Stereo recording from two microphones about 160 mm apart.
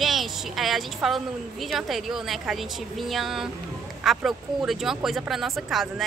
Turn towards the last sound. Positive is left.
turn(degrees=0)  # may be behind; listen again after turning